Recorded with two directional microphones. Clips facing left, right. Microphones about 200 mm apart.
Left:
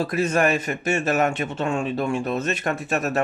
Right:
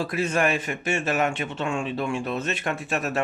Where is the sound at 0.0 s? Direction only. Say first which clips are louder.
Left 3 dB; 40° left (ahead or behind).